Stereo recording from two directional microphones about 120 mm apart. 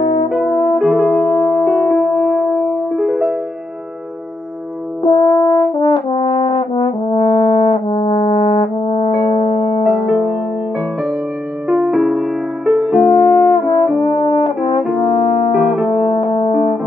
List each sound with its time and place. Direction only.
0.3 s brass instrument: 5° left (ahead or behind)
0.7 s music: 5° right (ahead or behind)
5.0 s brass instrument: 45° left (ahead or behind)
9.9 s music: centre (ahead or behind)
11.6 s music: 10° right (ahead or behind)
13.1 s french horn: 40° left (ahead or behind)
14.0 s brass instrument: 50° left (ahead or behind)
15.0 s music: 45° left (ahead or behind)
15.5 s music: 5° right (ahead or behind)
16.0 s music: 45° left (ahead or behind)